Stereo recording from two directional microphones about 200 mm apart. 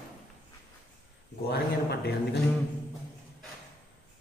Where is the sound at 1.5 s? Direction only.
55° left (ahead or behind).